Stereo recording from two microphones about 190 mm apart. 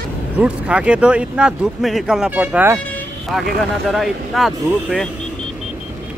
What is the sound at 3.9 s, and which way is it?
Speech, centre (ahead or behind).